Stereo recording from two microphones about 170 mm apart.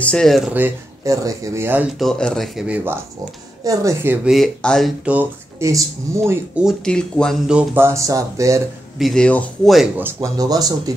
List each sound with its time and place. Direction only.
0.0 s speech: 5° left (ahead or behind); by 1.9 s 15° right (ahead or behind)
2.0 s speech: 5° left (ahead or behind); by 6.6 s 15° right (ahead or behind)
6.6 s speech: 5° left (ahead or behind); by 8.6 s 20° right (ahead or behind)
8.9 s speech: centre (ahead or behind)
9.9 s speech: 15° right (ahead or behind)